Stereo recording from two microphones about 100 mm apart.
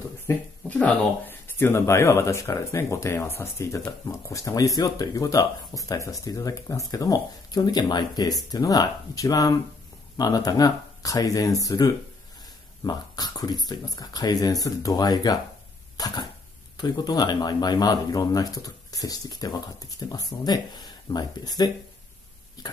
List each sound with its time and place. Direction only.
0.3 s speech: 15° left (ahead or behind); by 22.7 s 40° left (ahead or behind)